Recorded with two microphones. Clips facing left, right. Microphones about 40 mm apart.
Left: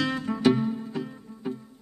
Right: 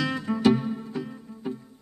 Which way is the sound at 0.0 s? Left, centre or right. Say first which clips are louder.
Right 1 dB; centre.